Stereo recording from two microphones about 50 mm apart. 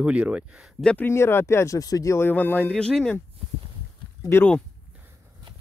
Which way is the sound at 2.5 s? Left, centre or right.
Centre.